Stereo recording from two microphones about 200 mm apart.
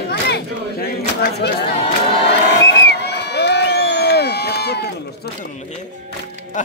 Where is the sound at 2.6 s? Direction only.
55° left (ahead or behind).